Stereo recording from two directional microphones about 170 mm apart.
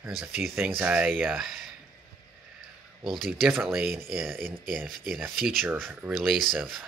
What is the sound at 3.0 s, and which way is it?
Speech, centre (ahead or behind).